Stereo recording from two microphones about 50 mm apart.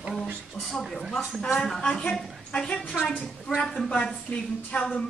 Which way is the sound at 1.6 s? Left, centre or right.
Centre.